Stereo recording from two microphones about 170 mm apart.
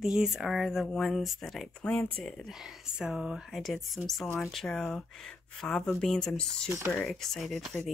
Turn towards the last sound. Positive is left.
turn(degrees=0)  # may be behind; listen again after turning